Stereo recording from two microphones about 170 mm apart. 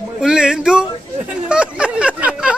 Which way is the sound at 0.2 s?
5° right (ahead or behind).